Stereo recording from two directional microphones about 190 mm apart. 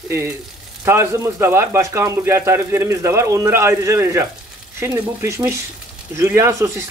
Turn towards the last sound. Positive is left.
turn(degrees=-15)  # may be behind; listen again after turning